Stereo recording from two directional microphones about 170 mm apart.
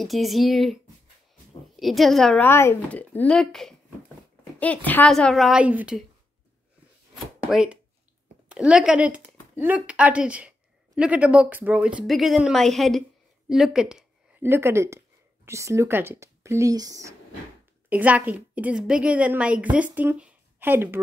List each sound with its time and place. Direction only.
0.0 s a woman's voice: centre (ahead or behind)
1.8 s a woman's voice: centre (ahead or behind)
7.4 s a woman's voice: 5° right (ahead or behind); by 17.1 s 20° right (ahead or behind)
17.8 s a woman's voice: 10° right (ahead or behind)